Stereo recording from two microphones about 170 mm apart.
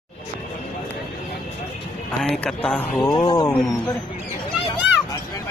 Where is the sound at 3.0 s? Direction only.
25° left (ahead or behind).